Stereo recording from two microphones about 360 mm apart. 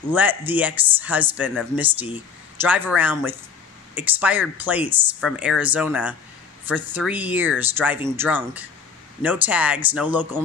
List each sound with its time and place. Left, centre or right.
0.1 s speech: centre